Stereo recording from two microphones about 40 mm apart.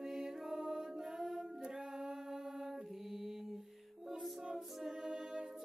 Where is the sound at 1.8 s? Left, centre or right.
Centre.